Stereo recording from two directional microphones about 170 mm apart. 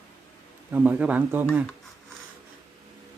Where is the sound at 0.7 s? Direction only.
5° right (ahead or behind).